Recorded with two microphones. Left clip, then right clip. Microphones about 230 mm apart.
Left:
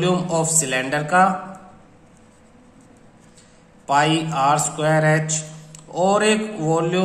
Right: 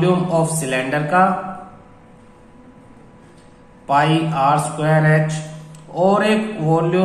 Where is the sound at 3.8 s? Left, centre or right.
Left.